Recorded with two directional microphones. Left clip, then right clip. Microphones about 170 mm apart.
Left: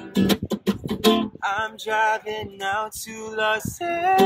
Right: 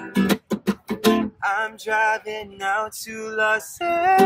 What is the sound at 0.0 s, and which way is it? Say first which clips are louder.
Music: even; 20° right (ahead or behind).